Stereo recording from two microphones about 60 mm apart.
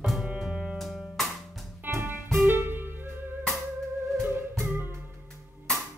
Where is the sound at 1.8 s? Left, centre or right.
Right.